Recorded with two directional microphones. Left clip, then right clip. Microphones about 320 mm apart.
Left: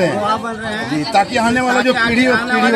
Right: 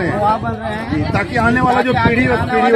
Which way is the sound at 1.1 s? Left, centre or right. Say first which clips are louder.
Left 2 dB; left.